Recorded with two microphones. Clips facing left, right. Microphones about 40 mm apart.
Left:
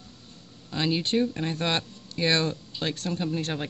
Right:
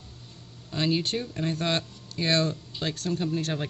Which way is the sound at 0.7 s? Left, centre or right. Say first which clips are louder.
Left 2 dB; centre.